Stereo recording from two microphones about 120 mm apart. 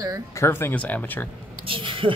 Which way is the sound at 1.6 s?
45° right (ahead or behind).